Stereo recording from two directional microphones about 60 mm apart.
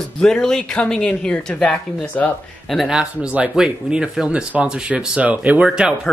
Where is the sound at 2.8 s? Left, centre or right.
Centre.